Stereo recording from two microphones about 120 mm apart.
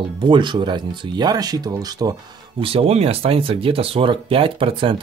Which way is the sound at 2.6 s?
50° right (ahead or behind).